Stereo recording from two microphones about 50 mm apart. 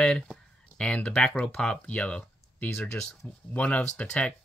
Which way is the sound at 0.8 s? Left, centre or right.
Left.